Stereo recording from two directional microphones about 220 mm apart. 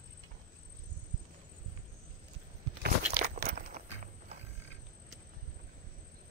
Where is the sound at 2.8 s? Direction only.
40° right (ahead or behind).